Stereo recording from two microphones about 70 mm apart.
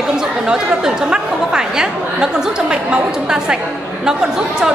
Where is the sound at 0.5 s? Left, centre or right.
Centre.